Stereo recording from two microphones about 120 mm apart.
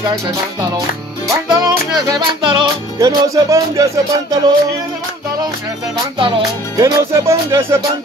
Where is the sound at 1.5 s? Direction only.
30° right (ahead or behind).